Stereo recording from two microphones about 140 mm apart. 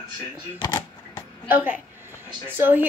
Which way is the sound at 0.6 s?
25° left (ahead or behind).